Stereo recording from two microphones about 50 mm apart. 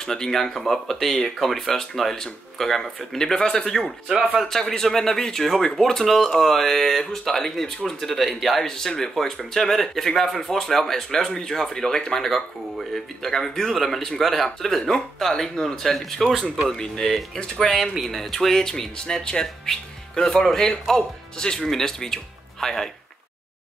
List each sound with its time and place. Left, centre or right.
0.0 s speech: centre
4.3 s a man's voice: centre
4.6 s speech: centre
16.6 s speech: centre